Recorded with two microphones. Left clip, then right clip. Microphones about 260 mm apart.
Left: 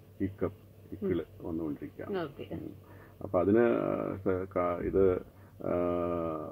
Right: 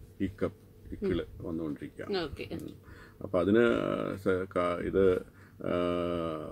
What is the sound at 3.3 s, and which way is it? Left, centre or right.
Speech, right.